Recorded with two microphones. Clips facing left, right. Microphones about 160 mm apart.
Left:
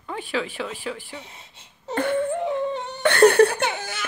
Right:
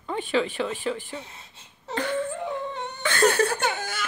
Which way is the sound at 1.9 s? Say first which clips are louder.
Left 5 dB; 55° left (ahead or behind).